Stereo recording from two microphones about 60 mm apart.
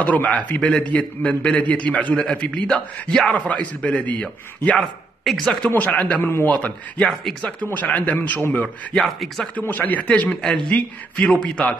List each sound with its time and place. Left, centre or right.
0.0 s a man's voice: left
5.2 s speech: centre
5.8 s a man's voice: left
7.6 s a man's voice: left
8.9 s speech: centre
9.6 s a man's voice: left